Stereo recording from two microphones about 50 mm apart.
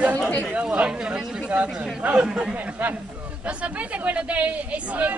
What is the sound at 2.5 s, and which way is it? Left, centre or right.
Speech, right.